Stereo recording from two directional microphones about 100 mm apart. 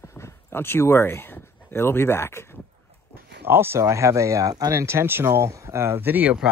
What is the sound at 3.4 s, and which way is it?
Speech, 25° right (ahead or behind).